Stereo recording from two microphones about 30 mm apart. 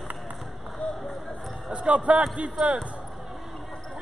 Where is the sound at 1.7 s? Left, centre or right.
Right.